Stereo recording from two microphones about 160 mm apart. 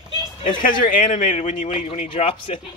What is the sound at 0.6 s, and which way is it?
Speech, 60° left (ahead or behind).